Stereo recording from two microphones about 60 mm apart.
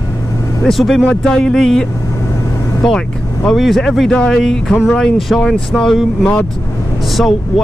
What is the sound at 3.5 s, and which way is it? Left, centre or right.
Speech, centre.